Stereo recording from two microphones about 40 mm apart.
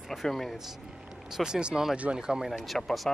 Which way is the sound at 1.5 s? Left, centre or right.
Right.